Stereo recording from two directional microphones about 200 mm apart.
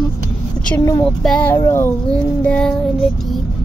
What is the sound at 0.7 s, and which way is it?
Speech, 15° left (ahead or behind).